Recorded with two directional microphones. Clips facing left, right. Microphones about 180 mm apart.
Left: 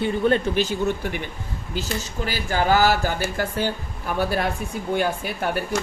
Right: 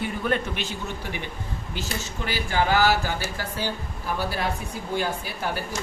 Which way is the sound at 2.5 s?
45° left (ahead or behind).